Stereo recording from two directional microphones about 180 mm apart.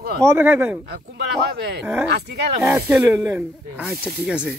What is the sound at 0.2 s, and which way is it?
Speech, 10° right (ahead or behind).